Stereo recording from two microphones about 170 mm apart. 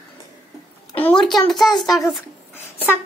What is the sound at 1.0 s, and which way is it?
A child's voice, 5° left (ahead or behind).